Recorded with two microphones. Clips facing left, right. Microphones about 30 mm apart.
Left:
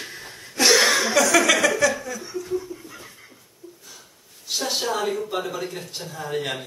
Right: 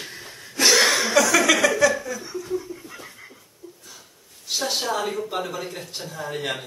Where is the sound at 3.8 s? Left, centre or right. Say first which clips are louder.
Even; centre.